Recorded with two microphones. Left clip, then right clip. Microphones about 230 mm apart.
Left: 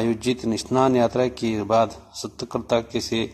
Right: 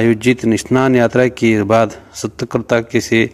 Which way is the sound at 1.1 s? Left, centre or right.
Right.